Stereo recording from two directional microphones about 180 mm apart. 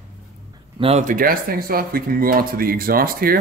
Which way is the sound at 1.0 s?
50° right (ahead or behind).